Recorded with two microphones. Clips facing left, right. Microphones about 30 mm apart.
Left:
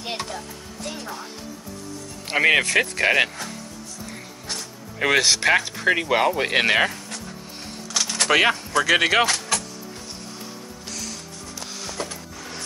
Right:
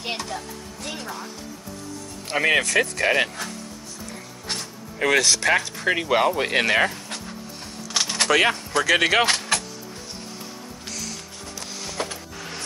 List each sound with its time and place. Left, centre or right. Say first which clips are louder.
2.2 s speech: left 2 dB; centre
5.0 s speech: left 1 dB; centre
6.5 s speech: left 2 dB; centre
7.9 s a sound: right 1 dB; centre
8.3 s speech: left 2 dB; centre
9.2 s vehicle: right 1 dB; right
12.0 s music: right 2 dB; right